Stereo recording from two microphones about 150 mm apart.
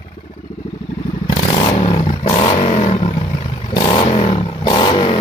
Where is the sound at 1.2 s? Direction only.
35° left (ahead or behind).